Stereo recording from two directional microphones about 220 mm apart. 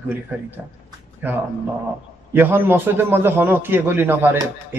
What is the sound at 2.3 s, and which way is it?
A man's voice, 10° right (ahead or behind).